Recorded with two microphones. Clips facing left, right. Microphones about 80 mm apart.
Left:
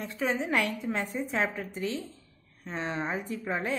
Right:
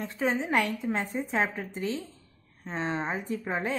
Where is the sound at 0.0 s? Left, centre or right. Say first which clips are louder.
Right 1 dB; right.